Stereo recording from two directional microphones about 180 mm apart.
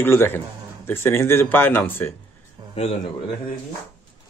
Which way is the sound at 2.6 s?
25° right (ahead or behind).